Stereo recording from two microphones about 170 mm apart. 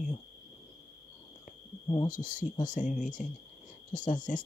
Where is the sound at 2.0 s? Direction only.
50° left (ahead or behind).